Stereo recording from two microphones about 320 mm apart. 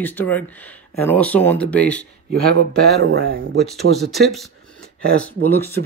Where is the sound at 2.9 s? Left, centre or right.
Right.